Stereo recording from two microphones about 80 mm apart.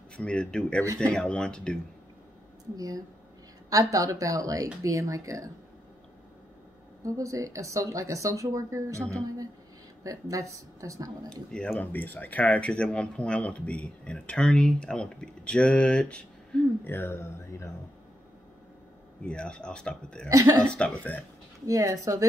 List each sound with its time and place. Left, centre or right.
0.1 s speech: centre
2.7 s speech: right
7.2 s a woman's voice: right
11.2 s speech: centre
11.7 s speech: left
16.8 s speech: left
19.2 s speech: centre
20.2 s speech: right
20.7 s speech: centre
21.6 s speech: right